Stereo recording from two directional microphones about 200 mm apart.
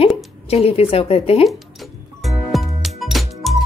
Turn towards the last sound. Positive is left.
turn(degrees=0)  # may be behind; listen again after turning